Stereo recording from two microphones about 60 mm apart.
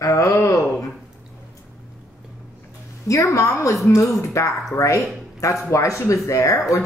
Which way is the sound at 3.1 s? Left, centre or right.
Left.